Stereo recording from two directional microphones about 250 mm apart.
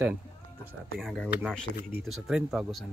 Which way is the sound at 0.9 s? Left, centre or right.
Centre.